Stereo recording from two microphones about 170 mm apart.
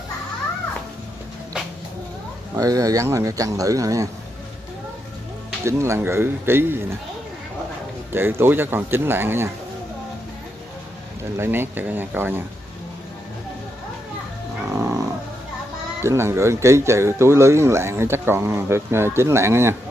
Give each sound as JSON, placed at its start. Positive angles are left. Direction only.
{"t": 2.5, "sound": "speech", "side_deg": -20}
{"t": 5.7, "sound": "speech", "side_deg": -15}
{"t": 8.1, "sound": "speech", "side_deg": -15}
{"t": 11.3, "sound": "speech", "side_deg": -15}
{"t": 14.8, "sound": "roaring cats", "side_deg": -15}
{"t": 16.0, "sound": "speech", "side_deg": -15}